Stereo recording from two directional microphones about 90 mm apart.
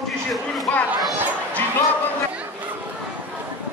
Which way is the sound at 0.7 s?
15° left (ahead or behind).